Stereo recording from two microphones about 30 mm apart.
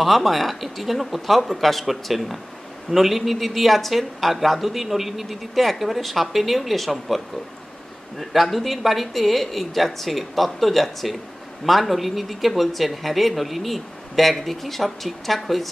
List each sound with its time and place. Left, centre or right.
0.0 s speech: centre
8.2 s speech: centre